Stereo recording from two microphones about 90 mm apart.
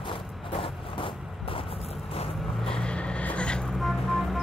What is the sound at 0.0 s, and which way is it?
Vehicle, 70° left (ahead or behind).